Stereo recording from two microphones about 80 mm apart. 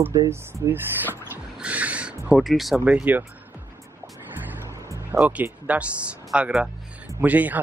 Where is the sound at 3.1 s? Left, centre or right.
Right.